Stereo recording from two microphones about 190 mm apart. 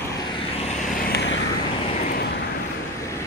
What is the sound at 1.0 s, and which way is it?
Vehicle, 60° left (ahead or behind).